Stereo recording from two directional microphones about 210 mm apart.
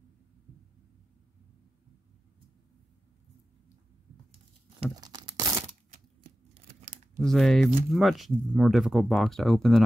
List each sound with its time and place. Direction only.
4.9 s tearing: 20° right (ahead or behind)
6.8 s a sound: centre (ahead or behind)
7.9 s speech: centre (ahead or behind)